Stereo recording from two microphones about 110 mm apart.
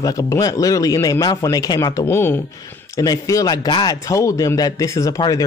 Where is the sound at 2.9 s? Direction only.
30° left (ahead or behind).